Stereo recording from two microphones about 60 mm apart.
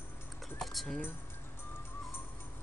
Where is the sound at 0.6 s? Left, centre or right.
Centre.